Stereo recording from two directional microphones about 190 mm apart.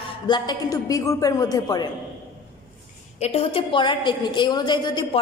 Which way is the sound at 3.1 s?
35° left (ahead or behind).